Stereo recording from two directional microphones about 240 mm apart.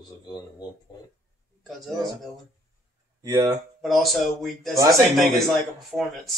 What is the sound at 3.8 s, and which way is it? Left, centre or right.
Speech, centre.